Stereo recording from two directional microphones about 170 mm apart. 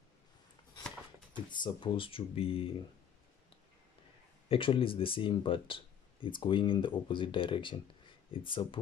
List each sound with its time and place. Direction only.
1.5 s speech: 25° left (ahead or behind)
4.5 s speech: 30° left (ahead or behind)